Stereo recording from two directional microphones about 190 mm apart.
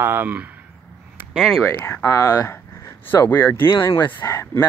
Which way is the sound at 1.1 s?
Centre (ahead or behind).